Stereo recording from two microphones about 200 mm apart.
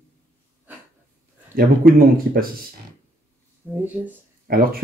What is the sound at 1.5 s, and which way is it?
Speech, 45° right (ahead or behind).